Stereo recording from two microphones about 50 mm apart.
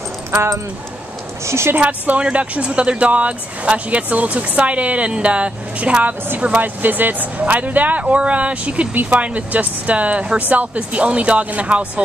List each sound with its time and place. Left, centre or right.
1.4 s a woman's voice: right
1.8 s speech: right